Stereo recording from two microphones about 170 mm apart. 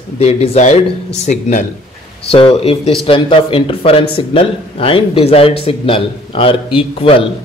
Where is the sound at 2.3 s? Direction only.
35° left (ahead or behind).